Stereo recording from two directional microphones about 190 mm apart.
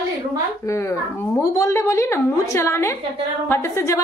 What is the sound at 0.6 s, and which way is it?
A woman's voice, 15° left (ahead or behind).